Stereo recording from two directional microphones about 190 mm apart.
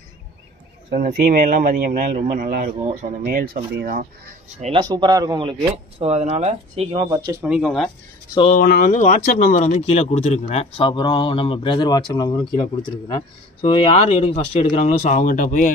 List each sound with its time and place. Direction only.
0.9 s speech: 45° right (ahead or behind)
4.7 s speech: 20° right (ahead or behind)
7.4 s speech: 5° right (ahead or behind)
8.5 s speech: 50° left (ahead or behind)